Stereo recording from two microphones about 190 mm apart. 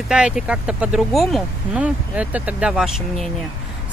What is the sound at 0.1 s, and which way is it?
Speech, 5° right (ahead or behind).